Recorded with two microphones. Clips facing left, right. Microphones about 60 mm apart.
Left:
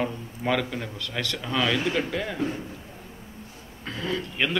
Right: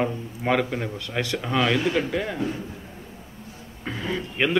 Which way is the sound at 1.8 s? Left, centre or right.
Centre.